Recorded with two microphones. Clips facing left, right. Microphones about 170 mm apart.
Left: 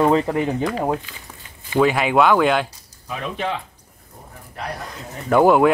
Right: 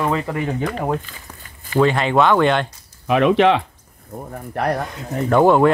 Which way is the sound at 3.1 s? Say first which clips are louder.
Right 12 dB; 80° right.